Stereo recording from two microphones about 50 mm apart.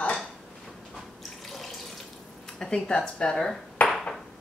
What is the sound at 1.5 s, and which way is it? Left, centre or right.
Water tap, centre.